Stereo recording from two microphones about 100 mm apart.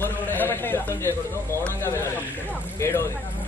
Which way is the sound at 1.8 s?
30° left (ahead or behind).